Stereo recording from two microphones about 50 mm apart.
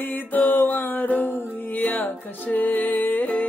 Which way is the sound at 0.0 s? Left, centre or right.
Left.